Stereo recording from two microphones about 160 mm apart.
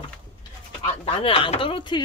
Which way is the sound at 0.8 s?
35° left (ahead or behind).